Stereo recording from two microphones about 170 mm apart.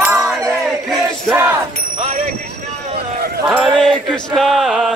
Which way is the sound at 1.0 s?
5° right (ahead or behind).